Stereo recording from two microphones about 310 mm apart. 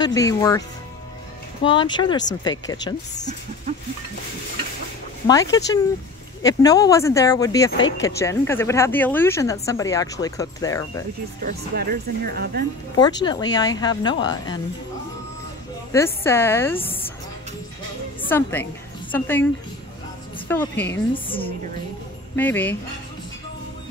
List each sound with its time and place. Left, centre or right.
0.0 s speech: centre
5.2 s speech: centre
11.4 s speech: right
12.9 s speech: centre
15.9 s speech: centre
18.3 s speech: centre
22.3 s speech: centre